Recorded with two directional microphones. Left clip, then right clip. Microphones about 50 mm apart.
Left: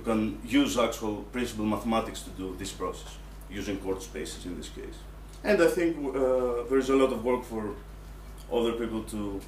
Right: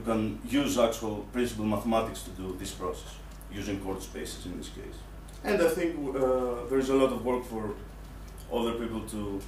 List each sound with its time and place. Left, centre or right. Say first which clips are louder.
0.0 s a man's voice: left 1 dB; centre